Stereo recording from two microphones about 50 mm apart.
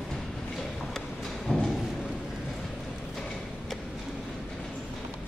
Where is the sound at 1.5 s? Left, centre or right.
Left.